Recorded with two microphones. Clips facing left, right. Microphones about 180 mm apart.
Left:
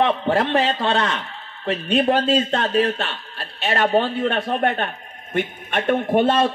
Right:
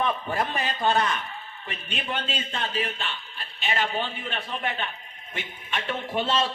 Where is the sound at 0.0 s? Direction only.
80° left.